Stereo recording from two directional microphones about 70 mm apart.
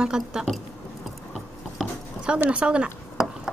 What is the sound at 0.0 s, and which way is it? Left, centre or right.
Speech, centre.